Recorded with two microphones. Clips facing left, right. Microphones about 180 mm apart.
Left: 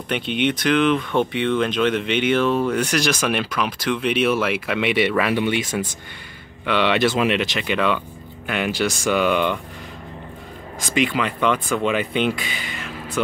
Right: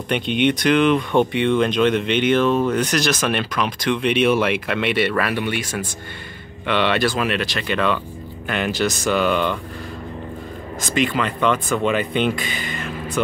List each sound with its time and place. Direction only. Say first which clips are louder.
0.1 s speech: right 3 dB; 5° left (ahead or behind); by 5.9 s 20° left (ahead or behind)
6.6 s speech: even; 10° left (ahead or behind)
10.8 s speech: even; 10° left (ahead or behind)
12.0 s speech: right 1 dB; 50° right (ahead or behind)
12.3 s a sound: right 2 dB; 10° left (ahead or behind)